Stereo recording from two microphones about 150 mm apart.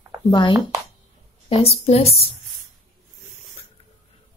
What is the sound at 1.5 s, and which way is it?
Speech, 45° left (ahead or behind).